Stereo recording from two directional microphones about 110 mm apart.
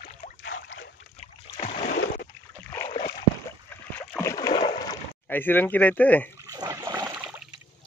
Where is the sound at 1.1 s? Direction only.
85° left.